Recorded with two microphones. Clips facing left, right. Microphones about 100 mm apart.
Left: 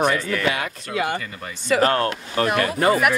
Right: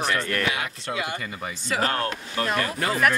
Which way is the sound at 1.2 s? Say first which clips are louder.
Right 1 dB; 10° right (ahead or behind).